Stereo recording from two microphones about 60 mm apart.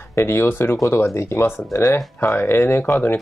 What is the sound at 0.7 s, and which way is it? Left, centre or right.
Speech, left.